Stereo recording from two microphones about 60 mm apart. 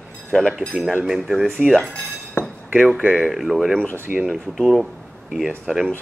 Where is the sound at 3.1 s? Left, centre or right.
Centre.